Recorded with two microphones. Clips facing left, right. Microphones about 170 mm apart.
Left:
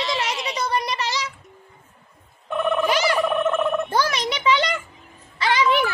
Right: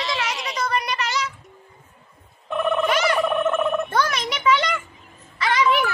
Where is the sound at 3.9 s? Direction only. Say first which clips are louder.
Left 1 dB; 30° left (ahead or behind).